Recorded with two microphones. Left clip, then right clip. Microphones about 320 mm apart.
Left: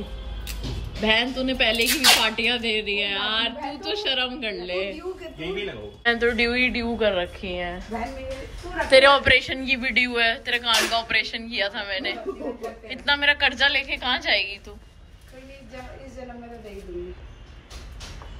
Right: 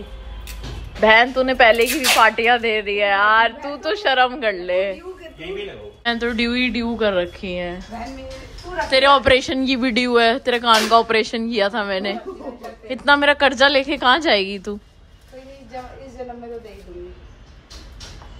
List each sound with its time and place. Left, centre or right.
1.0 s a woman's voice: centre
1.9 s speech: centre
2.1 s a woman's voice: centre
6.0 s speech: centre
8.9 s a woman's voice: centre